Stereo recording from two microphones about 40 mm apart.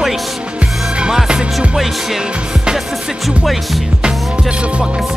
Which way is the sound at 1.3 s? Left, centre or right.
Right.